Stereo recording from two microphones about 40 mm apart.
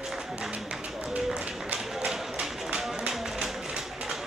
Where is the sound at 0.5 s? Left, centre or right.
Right.